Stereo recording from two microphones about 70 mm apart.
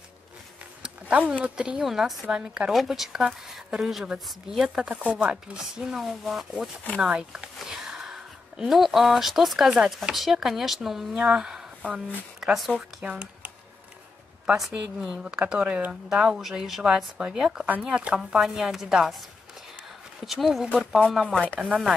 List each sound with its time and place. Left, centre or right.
0.8 s a sound: centre
1.3 s speech: centre
2.7 s speech: centre
13.0 s speech: centre
14.7 s speech: centre
20.2 s speech: centre